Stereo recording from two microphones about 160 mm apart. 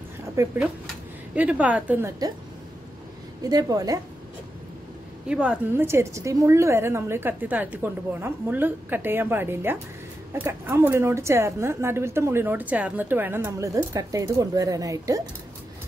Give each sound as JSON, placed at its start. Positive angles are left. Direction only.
{"t": 0.4, "sound": "a woman's voice", "side_deg": -20}
{"t": 3.4, "sound": "a woman's voice", "side_deg": -25}
{"t": 5.3, "sound": "a woman's voice", "side_deg": -5}